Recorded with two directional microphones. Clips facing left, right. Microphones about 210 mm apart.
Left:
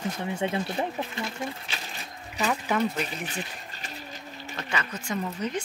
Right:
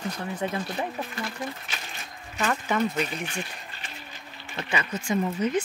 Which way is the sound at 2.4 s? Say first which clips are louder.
Even; 5° left (ahead or behind).